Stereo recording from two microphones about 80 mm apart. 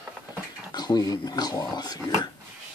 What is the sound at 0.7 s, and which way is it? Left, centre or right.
Speech, left.